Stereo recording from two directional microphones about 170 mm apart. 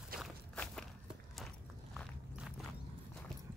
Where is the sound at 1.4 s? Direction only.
Centre (ahead or behind).